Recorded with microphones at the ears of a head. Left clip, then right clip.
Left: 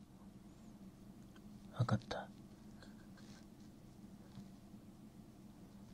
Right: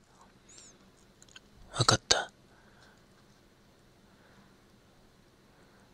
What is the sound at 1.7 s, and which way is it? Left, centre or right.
Speech, right.